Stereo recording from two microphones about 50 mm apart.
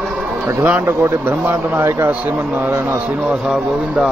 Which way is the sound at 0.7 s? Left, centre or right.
Right.